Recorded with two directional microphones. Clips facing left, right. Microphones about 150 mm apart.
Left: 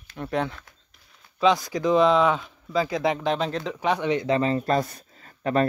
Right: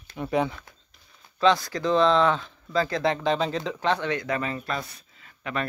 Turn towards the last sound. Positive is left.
turn(degrees=40)  # may be behind; listen again after turning